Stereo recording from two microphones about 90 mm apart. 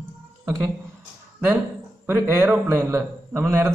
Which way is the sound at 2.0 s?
25° right (ahead or behind).